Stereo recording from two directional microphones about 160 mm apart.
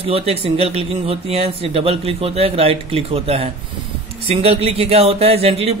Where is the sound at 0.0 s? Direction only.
40° right (ahead or behind).